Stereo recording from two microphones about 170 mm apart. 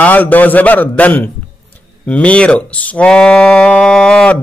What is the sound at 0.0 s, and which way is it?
Speech, 10° left (ahead or behind).